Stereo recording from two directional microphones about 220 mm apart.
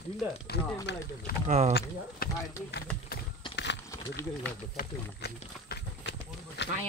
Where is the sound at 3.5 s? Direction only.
50° left (ahead or behind).